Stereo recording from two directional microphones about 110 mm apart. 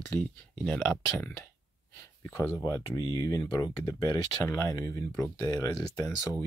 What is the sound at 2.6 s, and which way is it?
Speech, 35° left (ahead or behind).